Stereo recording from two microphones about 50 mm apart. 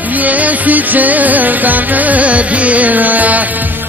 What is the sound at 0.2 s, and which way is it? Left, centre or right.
Music, right.